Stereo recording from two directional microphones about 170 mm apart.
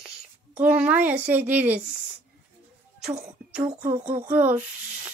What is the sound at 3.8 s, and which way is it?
Speech, 45° right (ahead or behind).